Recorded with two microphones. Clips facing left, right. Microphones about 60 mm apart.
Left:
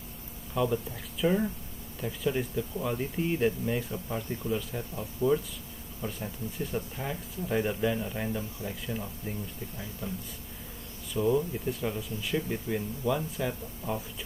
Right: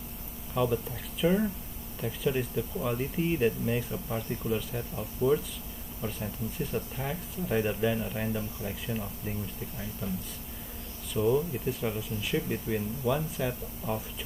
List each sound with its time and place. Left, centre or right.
0.6 s speech: centre